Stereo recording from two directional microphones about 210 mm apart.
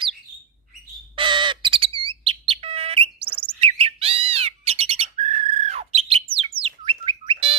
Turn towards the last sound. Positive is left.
turn(degrees=-25)  # may be behind; listen again after turning